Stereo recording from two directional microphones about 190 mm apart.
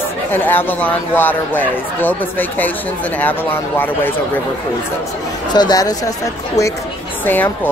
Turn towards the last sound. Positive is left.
turn(degrees=10)  # may be behind; listen again after turning